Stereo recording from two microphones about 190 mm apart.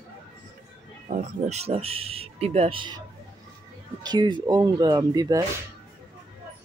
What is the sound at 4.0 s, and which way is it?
Speech, 25° right (ahead or behind).